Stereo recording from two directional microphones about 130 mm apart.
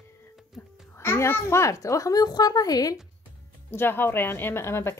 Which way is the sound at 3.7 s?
15° left (ahead or behind).